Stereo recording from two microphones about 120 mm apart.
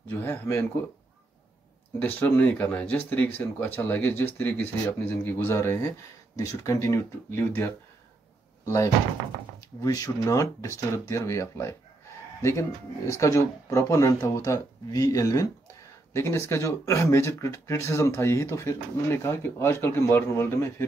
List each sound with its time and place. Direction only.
0.1 s speech: 20° left (ahead or behind)
2.0 s speech: 15° left (ahead or behind)
9.8 s speech: 30° left (ahead or behind)